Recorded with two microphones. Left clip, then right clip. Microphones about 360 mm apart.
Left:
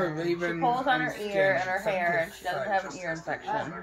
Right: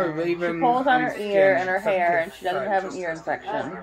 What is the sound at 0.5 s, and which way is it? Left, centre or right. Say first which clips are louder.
Speech: right 7 dB; centre.